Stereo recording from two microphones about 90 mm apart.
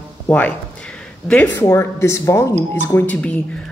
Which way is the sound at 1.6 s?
30° left (ahead or behind).